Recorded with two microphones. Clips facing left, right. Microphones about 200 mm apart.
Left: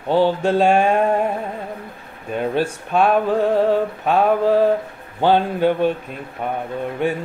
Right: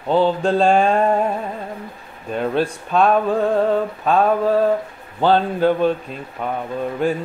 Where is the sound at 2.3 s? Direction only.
10° left (ahead or behind).